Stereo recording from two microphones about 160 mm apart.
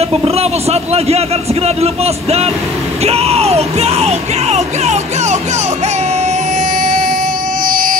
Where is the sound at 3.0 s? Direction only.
40° right (ahead or behind).